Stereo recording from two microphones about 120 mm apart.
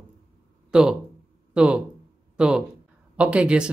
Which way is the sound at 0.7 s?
5° right (ahead or behind).